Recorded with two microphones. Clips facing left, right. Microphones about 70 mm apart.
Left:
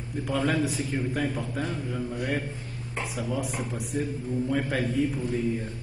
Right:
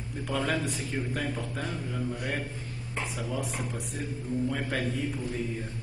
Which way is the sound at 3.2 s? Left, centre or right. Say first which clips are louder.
Left 5 dB; centre.